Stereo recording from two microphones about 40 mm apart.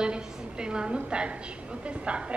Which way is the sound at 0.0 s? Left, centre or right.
Right.